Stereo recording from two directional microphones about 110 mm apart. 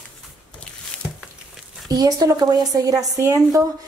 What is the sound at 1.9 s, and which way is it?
Speech, 35° right (ahead or behind).